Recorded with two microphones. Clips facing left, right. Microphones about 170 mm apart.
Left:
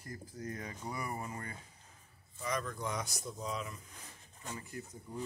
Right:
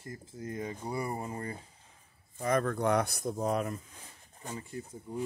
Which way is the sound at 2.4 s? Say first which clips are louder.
Right 9 dB; 55° right (ahead or behind).